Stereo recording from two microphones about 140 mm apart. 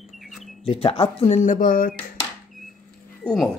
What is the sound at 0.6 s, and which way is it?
Speech, 45° left (ahead or behind).